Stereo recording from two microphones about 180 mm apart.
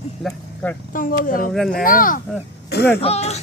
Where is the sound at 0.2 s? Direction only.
5° left (ahead or behind).